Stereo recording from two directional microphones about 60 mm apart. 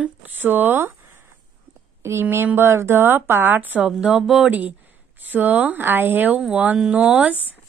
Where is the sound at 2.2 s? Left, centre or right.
Right.